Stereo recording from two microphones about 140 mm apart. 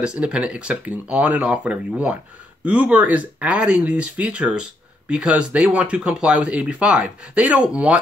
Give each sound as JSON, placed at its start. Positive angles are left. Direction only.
{"t": 0.0, "sound": "speech", "side_deg": -5}